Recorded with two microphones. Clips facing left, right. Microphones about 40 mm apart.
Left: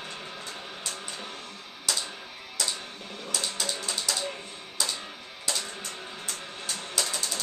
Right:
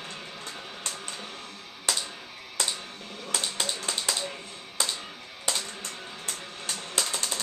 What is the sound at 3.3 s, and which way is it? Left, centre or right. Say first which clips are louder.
Typing: right 1 dB; right.